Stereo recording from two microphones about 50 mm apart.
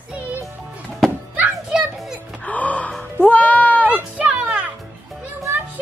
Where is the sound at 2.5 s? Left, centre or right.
Left.